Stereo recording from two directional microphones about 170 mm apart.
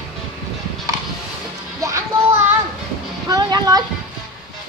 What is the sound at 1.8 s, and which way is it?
Children playing, 15° right (ahead or behind).